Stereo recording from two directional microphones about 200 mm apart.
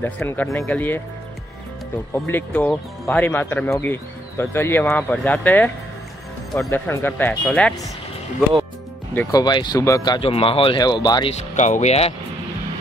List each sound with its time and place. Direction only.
0.0 s speech: 10° left (ahead or behind)
2.1 s speech: 10° left (ahead or behind)
6.7 s speech: 10° left (ahead or behind)
9.1 s speech: 10° left (ahead or behind)
9.4 s speech: 20° left (ahead or behind)
11.3 s speech: 35° left (ahead or behind)